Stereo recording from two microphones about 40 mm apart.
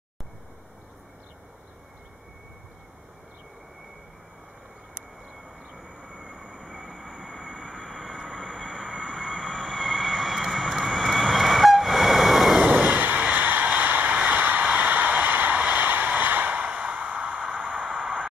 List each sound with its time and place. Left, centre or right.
5.7 s train: right
6.7 s train: centre
8.9 s vehicle: centre
12.6 s a sound: right
14.2 s vehicle: right
16.6 s a sound: right